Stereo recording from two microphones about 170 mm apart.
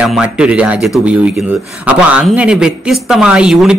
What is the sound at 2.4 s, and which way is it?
Speech, 5° right (ahead or behind).